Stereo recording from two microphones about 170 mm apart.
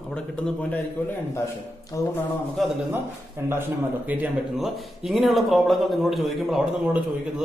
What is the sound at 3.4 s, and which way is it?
A man's voice, 15° right (ahead or behind).